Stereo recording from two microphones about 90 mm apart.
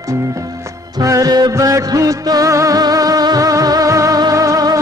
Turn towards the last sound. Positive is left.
turn(degrees=-45)  # may be behind; listen again after turning